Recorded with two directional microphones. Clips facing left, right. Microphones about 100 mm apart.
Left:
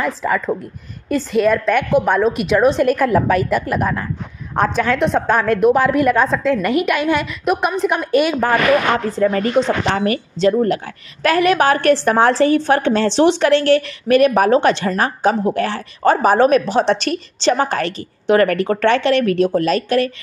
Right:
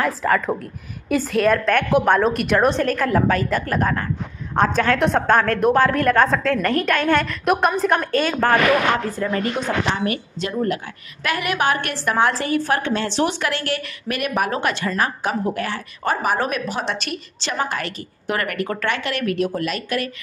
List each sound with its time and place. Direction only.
0.0 s a woman's voice: centre (ahead or behind)
2.8 s a woman's voice: 10° left (ahead or behind)
8.1 s a woman's voice: 15° left (ahead or behind)
9.2 s a woman's voice: 40° left (ahead or behind)